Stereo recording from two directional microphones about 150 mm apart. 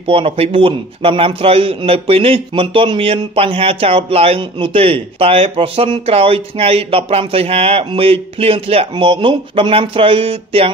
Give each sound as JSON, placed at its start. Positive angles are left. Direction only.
{"t": 0.0, "sound": "a man's voice", "side_deg": -35}